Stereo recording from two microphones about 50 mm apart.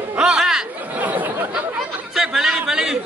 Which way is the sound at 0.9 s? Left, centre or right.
Right.